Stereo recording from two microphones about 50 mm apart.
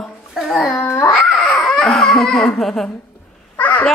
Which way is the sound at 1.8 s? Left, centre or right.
Centre.